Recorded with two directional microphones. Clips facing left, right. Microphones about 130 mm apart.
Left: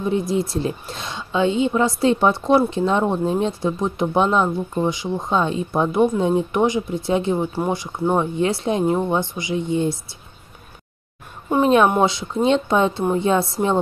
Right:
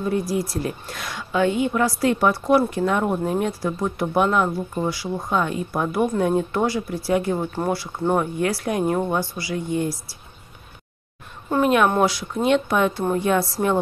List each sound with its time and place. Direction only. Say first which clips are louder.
0.0 s speech: left 2 dB; 20° left (ahead or behind)
11.6 s speech: left 2 dB; 30° left (ahead or behind)